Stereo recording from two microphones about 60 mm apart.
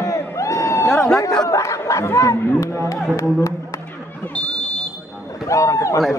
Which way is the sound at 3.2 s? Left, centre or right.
Left.